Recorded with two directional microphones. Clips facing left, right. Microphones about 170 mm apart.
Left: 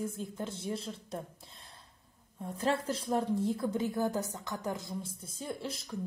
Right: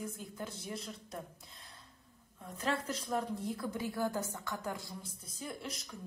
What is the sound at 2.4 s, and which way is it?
A woman's voice, 30° left (ahead or behind).